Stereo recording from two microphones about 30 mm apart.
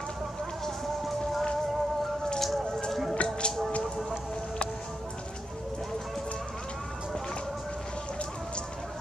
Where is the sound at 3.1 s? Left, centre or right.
Left.